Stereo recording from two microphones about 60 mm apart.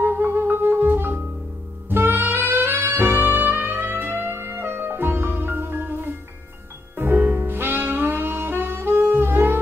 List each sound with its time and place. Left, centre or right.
0.0 s music: right
1.9 s saxophone: right